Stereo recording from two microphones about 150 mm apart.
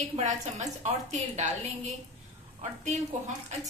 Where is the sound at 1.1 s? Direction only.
50° right (ahead or behind).